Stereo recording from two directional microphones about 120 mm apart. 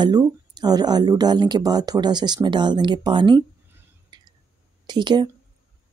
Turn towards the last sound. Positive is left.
turn(degrees=-40)  # may be behind; listen again after turning